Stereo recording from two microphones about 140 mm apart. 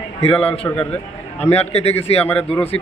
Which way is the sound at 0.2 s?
45° left (ahead or behind).